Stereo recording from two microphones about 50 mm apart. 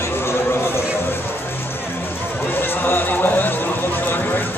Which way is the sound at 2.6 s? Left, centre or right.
Left.